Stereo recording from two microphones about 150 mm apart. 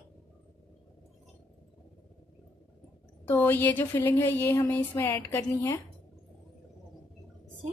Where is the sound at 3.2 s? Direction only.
15° left (ahead or behind).